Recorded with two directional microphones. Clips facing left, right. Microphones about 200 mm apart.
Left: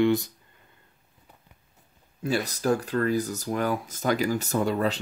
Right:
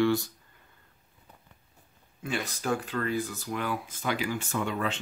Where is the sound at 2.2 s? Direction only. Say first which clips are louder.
Left 6 dB; 40° left (ahead or behind).